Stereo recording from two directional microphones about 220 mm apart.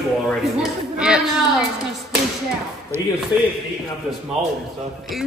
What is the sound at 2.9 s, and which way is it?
Speech, 10° right (ahead or behind).